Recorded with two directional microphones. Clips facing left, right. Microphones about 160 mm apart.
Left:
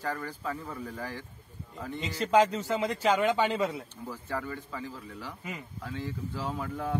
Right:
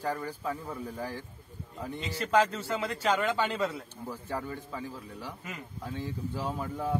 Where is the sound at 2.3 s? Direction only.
15° left (ahead or behind).